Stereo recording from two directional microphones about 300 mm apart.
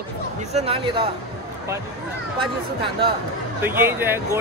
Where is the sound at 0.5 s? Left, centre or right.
Centre.